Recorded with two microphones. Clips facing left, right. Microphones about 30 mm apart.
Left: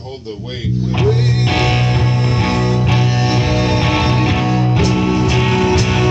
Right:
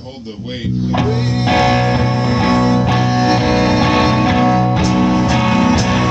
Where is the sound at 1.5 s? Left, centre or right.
Centre.